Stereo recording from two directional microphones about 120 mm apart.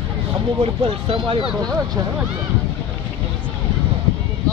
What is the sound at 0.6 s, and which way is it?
Speech, 50° right (ahead or behind).